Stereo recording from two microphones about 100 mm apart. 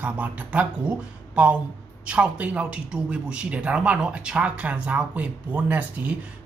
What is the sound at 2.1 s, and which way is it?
Speech, 10° right (ahead or behind).